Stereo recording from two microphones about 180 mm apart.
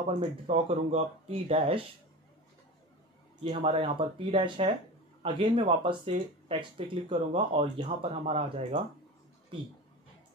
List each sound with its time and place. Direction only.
0.0 s speech: 35° right (ahead or behind)
3.4 s speech: 30° right (ahead or behind)